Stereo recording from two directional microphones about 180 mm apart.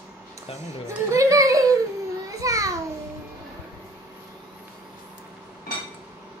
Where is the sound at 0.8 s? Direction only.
15° right (ahead or behind).